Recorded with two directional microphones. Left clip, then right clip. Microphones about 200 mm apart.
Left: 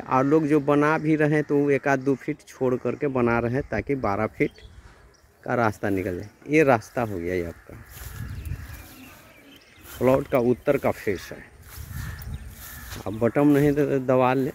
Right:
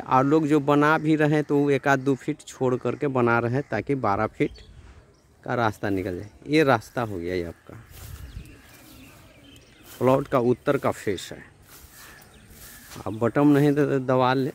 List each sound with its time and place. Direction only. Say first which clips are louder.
0.0 s a man's voice: right 1 dB; 15° right (ahead or behind)
9.9 s a man's voice: even; 20° right (ahead or behind)
13.0 s a man's voice: even; 15° right (ahead or behind)